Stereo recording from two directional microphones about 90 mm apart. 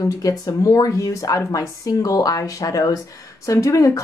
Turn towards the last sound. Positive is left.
turn(degrees=35)  # may be behind; listen again after turning